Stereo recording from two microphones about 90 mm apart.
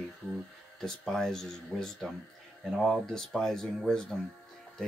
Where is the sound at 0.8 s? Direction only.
5° left (ahead or behind).